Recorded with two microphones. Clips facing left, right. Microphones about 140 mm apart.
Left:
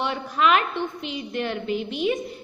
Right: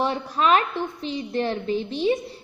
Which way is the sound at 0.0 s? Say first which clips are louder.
Even; 35° right (ahead or behind).